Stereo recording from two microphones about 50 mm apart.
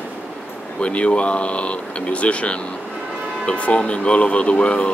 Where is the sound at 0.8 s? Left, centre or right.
Left.